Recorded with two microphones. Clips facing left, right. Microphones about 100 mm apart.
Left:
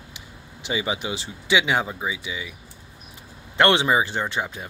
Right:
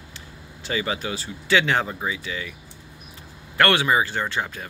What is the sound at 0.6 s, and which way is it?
Speech, 15° left (ahead or behind).